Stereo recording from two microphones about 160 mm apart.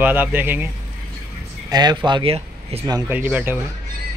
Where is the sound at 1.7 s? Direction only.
25° right (ahead or behind).